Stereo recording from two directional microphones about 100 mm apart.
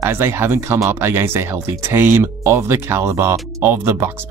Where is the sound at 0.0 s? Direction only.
25° right (ahead or behind).